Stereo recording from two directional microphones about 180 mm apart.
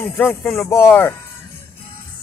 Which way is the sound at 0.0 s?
15° left (ahead or behind).